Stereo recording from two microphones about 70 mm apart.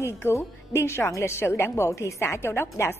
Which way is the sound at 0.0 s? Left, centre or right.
Left.